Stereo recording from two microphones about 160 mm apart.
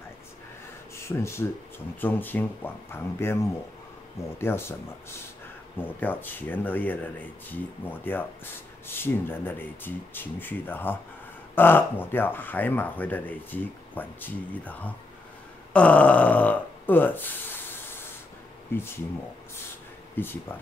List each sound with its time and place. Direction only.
0.9 s speech: 15° left (ahead or behind)
5.8 s speech: 10° left (ahead or behind)
18.7 s speech: 15° left (ahead or behind)
20.2 s speech: 10° left (ahead or behind)